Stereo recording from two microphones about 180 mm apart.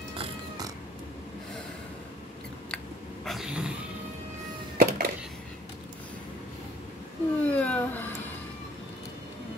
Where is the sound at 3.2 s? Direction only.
Centre (ahead or behind).